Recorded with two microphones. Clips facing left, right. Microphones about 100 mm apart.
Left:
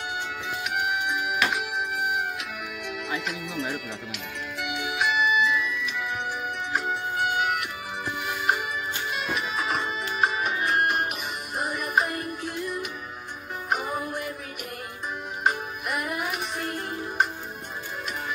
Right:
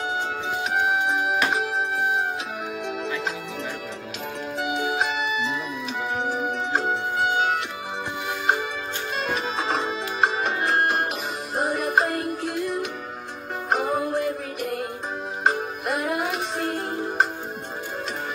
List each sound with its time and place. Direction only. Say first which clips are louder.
0.1 s music: right 5 dB; 30° right (ahead or behind)
3.3 s music: right 1 dB; 30° right (ahead or behind)